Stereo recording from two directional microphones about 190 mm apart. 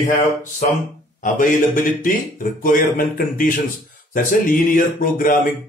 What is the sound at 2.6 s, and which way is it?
Speech, 45° left (ahead or behind).